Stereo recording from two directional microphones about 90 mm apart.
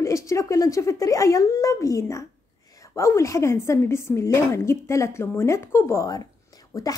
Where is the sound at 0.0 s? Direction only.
35° left (ahead or behind).